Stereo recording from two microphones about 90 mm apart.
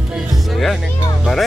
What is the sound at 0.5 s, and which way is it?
Speech, centre (ahead or behind).